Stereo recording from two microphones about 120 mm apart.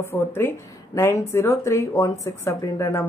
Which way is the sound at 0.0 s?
20° left (ahead or behind).